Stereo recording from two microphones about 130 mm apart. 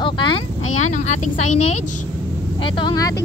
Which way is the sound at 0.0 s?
40° left (ahead or behind).